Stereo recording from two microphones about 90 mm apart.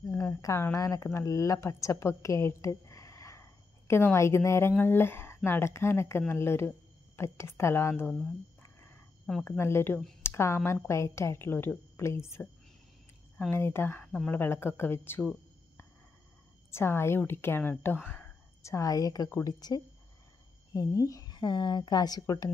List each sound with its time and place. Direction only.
0.1 s speech: 30° left (ahead or behind)
8.1 s speech: 10° left (ahead or behind)
9.4 s speech: 30° left (ahead or behind)
13.5 s speech: 25° left (ahead or behind)
14.0 s speech: 10° left (ahead or behind)
14.3 s speech: 25° left (ahead or behind)
16.7 s a woman's voice: 30° left (ahead or behind)